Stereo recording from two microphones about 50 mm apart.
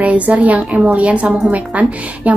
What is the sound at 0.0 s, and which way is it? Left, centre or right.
A woman's voice, right.